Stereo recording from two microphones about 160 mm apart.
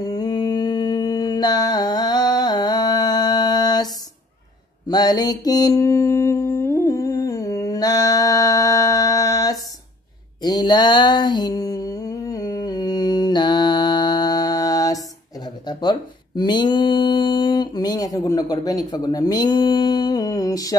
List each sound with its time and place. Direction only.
0.0 s humming: 25° left (ahead or behind)
4.8 s mantra: 25° left (ahead or behind)
10.4 s a sound: 25° left (ahead or behind)